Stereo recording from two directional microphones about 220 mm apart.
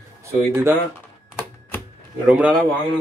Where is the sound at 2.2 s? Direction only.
5° right (ahead or behind).